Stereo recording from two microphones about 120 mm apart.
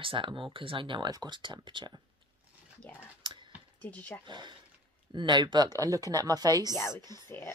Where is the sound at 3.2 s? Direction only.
40° right (ahead or behind).